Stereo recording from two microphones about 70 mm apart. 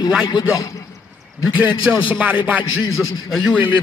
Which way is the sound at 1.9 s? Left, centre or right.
Right.